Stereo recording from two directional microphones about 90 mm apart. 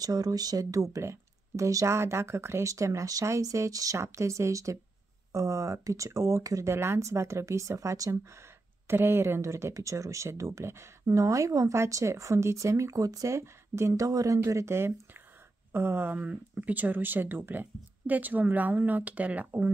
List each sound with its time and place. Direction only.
0.0 s speech: 45° right (ahead or behind); by 19.7 s 15° right (ahead or behind)